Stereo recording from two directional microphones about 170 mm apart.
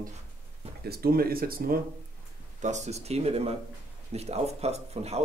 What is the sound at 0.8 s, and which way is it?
Speech, 65° right (ahead or behind).